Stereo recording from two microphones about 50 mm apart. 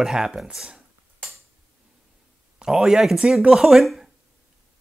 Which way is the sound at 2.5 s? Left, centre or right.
Centre.